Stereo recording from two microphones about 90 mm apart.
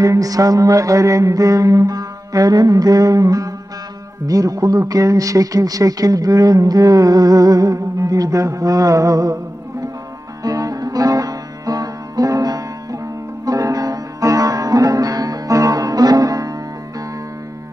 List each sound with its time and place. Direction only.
0.0 s speech: 40° right (ahead or behind)
10.4 s music: 40° right (ahead or behind)